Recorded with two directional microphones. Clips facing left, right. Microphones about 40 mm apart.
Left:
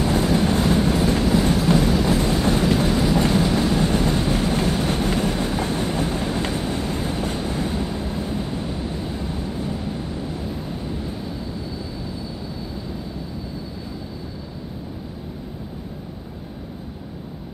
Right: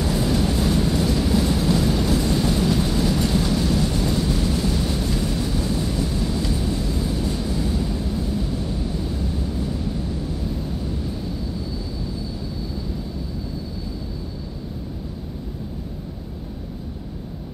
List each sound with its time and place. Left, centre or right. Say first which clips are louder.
0.0 s train: left 2 dB; left
1.9 s vehicle: left 2 dB; left
2.2 s vehicle: left 1 dB; left
3.2 s train: left 3 dB; left
3.5 s vehicle: left 2 dB; left